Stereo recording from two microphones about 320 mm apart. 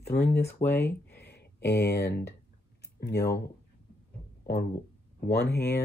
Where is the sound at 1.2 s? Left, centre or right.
Left.